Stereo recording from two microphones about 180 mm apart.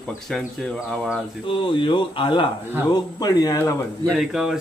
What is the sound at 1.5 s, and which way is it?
Speech, 30° left (ahead or behind).